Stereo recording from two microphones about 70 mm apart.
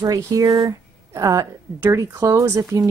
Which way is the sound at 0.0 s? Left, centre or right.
Right.